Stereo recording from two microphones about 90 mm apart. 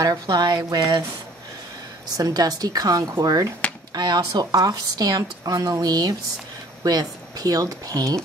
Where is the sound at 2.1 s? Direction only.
45° right (ahead or behind).